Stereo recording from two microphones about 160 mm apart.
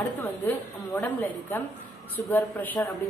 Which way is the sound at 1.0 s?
15° left (ahead or behind).